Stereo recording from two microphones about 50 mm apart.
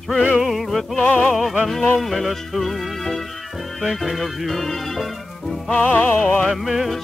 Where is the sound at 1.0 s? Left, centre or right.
Left.